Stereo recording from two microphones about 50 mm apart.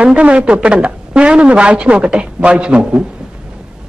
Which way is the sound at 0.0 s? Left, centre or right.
Centre.